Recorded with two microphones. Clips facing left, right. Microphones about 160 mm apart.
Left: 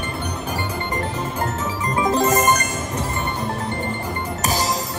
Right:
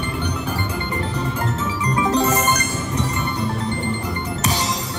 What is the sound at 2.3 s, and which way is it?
Music, 40° left (ahead or behind).